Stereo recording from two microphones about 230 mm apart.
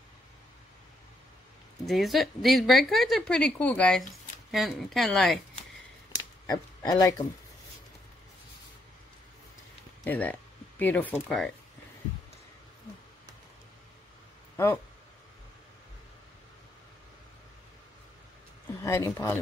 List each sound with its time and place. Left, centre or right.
1.9 s a woman's voice: centre
6.1 s a sound: centre
10.0 s speech: centre
18.8 s speech: centre